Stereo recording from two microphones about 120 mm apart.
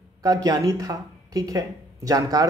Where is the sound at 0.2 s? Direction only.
30° right (ahead or behind).